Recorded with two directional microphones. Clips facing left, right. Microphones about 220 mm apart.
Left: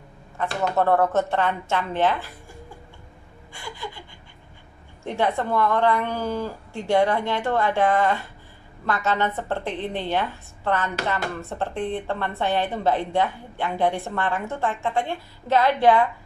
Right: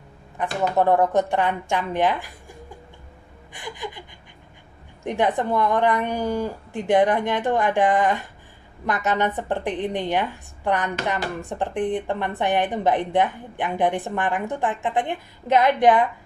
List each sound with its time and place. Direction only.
0.4 s a woman's voice: 15° right (ahead or behind)
3.5 s gasp: 15° right (ahead or behind)
5.0 s a woman's voice: 15° right (ahead or behind)